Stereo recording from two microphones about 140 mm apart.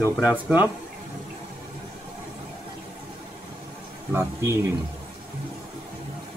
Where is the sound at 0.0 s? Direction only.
10° right (ahead or behind).